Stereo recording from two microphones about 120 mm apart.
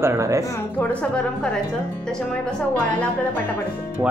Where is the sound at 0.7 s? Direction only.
10° left (ahead or behind).